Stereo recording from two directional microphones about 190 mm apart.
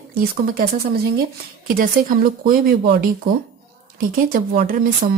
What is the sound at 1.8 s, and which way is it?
Speech, 45° right (ahead or behind).